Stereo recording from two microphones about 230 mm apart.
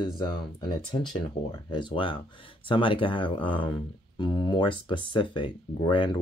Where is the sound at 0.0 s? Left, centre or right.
Centre.